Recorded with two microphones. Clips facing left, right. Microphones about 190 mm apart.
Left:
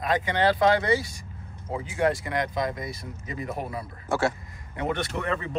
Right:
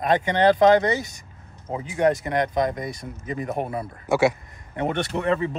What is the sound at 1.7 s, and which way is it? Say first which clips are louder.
Speech: right 4 dB; 20° right (ahead or behind).